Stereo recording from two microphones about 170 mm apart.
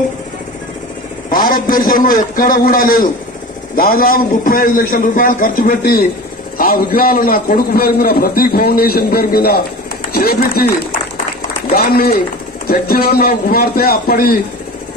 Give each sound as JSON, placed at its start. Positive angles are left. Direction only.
{"t": 1.3, "sound": "a man's voice", "side_deg": 55}